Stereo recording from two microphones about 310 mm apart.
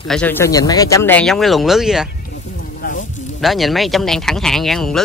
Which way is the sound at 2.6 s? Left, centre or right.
Left.